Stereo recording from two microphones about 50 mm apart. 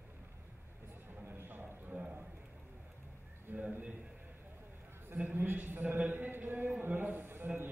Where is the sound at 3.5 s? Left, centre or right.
Right.